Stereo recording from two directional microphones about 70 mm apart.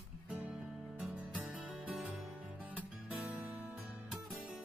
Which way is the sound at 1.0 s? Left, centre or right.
Right.